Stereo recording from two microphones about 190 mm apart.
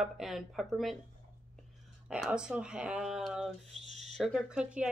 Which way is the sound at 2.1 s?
5° right (ahead or behind).